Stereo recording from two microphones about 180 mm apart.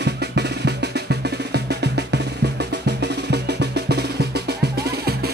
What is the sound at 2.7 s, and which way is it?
Drum, 70° right (ahead or behind).